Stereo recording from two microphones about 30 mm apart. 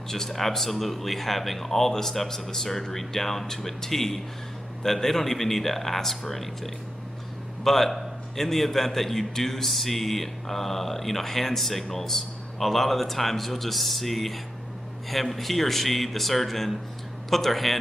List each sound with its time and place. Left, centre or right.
0.3 s a man's voice: centre